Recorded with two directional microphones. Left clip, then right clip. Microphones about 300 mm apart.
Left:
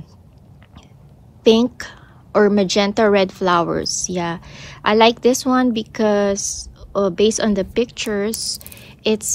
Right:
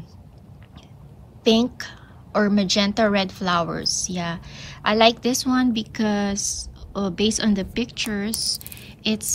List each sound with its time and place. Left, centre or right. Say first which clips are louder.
1.4 s a woman's voice: left 5 dB; left